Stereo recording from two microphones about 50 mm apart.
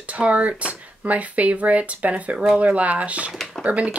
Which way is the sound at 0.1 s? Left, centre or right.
Right.